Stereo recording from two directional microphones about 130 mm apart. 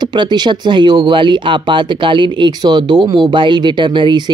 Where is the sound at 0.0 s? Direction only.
35° right (ahead or behind).